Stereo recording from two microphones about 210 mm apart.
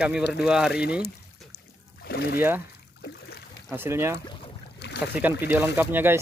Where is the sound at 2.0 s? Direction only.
50° left (ahead or behind).